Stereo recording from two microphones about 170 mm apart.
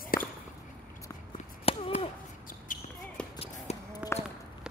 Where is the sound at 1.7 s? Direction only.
35° left (ahead or behind).